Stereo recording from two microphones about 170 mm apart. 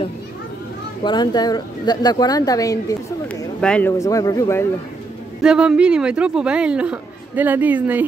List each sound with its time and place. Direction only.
1.0 s a woman's voice: 25° left (ahead or behind)
3.6 s speech: 5° left (ahead or behind)
4.0 s a woman's voice: 20° left (ahead or behind)
5.4 s speech: 5° right (ahead or behind)